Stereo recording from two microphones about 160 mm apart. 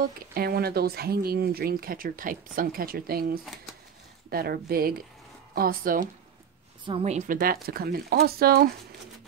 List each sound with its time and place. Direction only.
0.3 s speech: 75° right (ahead or behind)
6.9 s a woman's voice: 40° right (ahead or behind); by 7.5 s 60° right (ahead or behind)
7.6 s speech: 70° right (ahead or behind)